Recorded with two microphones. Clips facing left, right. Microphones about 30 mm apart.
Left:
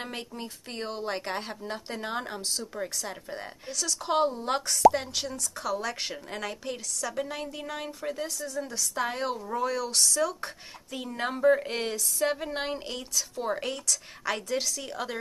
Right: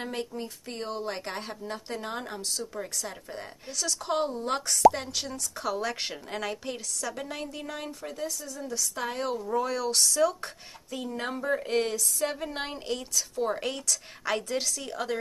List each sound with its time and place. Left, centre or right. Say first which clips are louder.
0.0 s a woman's voice: right 3 dB; centre
8.1 s speech: left 4 dB; left
8.9 s a woman's voice: left 3 dB; centre
10.9 s a woman's voice: left 1 dB; centre